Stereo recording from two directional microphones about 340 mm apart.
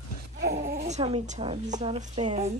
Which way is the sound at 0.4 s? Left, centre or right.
Right.